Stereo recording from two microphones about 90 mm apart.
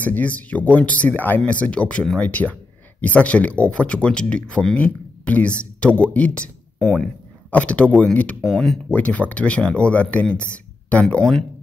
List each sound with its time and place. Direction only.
0.0 s speech: 15° left (ahead or behind)
8.5 s speech: 5° left (ahead or behind)
8.9 s speech: 15° left (ahead or behind)